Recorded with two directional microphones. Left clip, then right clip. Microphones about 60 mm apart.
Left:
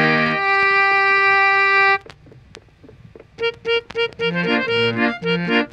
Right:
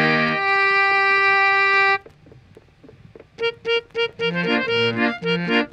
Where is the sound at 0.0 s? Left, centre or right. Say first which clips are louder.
Left 2 dB; right.